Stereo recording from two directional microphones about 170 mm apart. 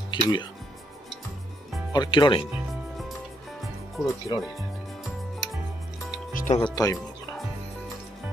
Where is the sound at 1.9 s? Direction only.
25° left (ahead or behind).